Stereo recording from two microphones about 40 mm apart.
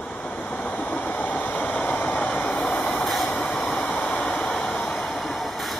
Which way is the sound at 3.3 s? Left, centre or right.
Left.